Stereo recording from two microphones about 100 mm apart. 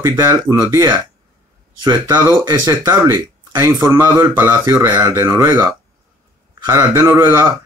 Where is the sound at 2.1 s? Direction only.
25° right (ahead or behind).